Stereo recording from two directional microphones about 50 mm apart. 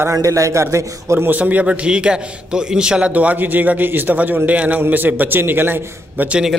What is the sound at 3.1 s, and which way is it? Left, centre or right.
A man's voice, right.